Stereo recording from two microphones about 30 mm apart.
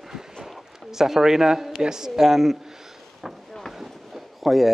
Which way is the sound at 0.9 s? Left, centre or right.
Centre.